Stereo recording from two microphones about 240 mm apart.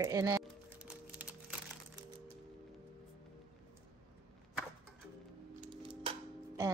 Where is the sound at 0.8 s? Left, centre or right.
Centre.